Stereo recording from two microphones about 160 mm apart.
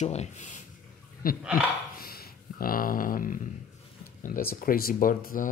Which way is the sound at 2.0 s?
70° left (ahead or behind).